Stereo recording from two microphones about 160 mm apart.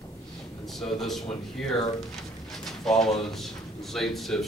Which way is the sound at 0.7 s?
Centre (ahead or behind).